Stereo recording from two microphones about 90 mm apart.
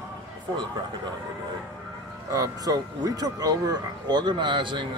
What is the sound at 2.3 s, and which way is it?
Speech, 40° right (ahead or behind).